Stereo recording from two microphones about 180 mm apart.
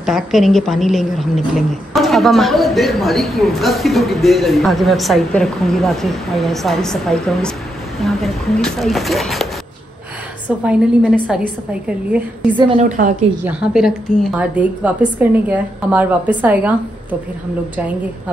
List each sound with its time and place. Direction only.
0.0 s a woman's voice: centre (ahead or behind)
10.6 s a woman's voice: 5° right (ahead or behind)
12.7 s a woman's voice: 45° right (ahead or behind)
13.4 s a woman's voice: 5° right (ahead or behind)